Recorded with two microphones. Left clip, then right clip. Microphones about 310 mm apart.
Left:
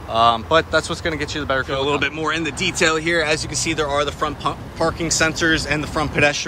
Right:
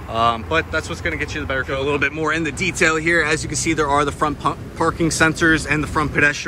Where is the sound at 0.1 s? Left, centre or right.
Centre.